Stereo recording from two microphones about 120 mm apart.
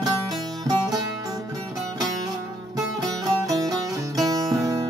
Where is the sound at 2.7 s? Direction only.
30° right (ahead or behind).